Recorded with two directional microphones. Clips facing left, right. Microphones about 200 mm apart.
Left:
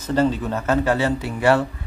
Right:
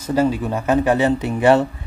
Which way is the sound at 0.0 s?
10° right (ahead or behind).